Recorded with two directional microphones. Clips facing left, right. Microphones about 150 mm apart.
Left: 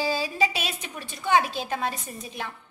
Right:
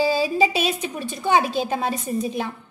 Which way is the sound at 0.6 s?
30° right (ahead or behind).